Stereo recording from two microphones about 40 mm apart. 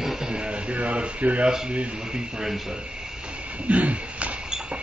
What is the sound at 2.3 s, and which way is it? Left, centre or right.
Speech, centre.